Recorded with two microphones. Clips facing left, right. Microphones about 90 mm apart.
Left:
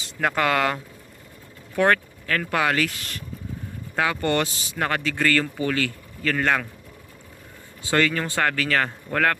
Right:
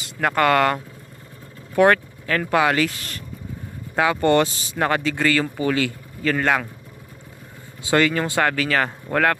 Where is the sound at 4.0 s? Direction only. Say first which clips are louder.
Right 5 dB; 25° right (ahead or behind).